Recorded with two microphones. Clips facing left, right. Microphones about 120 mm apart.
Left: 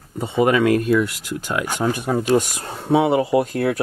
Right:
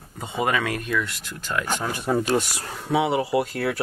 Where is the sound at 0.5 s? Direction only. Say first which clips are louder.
Left 9 dB; 40° left (ahead or behind).